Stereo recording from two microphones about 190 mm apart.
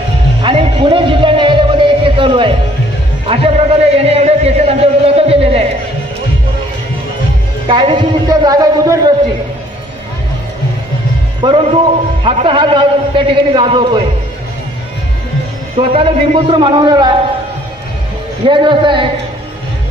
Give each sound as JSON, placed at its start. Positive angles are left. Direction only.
{"t": 0.4, "sound": "music", "side_deg": -25}
{"t": 3.3, "sound": "a sound", "side_deg": -30}
{"t": 7.6, "sound": "a man's voice", "side_deg": -25}
{"t": 11.4, "sound": "a man's voice", "side_deg": -30}
{"t": 15.8, "sound": "a man's voice", "side_deg": -30}
{"t": 18.5, "sound": "a man's voice", "side_deg": -25}